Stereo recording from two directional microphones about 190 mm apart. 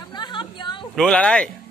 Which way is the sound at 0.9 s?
5° left (ahead or behind).